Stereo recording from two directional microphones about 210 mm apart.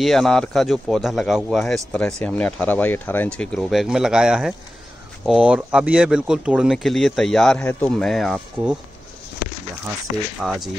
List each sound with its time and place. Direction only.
0.0 s a man's voice: centre (ahead or behind)
10.1 s speech: 45° left (ahead or behind)
10.4 s a man's voice: centre (ahead or behind)